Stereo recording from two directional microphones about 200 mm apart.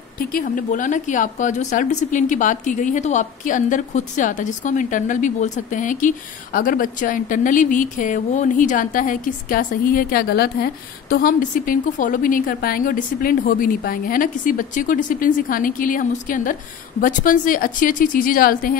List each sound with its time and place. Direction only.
0.3 s a woman's voice: 45° left (ahead or behind)